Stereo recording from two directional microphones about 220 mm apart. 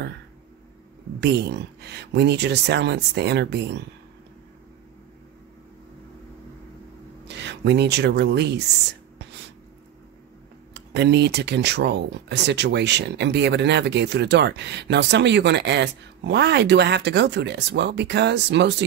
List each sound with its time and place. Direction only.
1.2 s speech: 50° right (ahead or behind)
7.2 s speech: 50° right (ahead or behind)
10.7 s speech: 50° right (ahead or behind)